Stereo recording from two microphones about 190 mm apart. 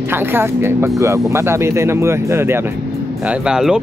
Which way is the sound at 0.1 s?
10° right (ahead or behind).